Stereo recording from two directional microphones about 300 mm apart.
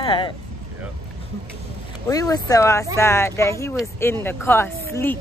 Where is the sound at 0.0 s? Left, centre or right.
Centre.